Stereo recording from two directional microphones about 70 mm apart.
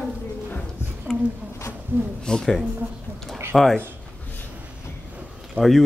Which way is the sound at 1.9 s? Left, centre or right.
Right.